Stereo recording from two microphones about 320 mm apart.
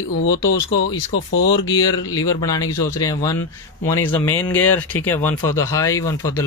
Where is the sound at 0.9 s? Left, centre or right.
Left.